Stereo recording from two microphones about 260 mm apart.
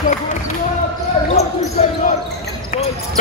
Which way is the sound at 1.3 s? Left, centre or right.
Left.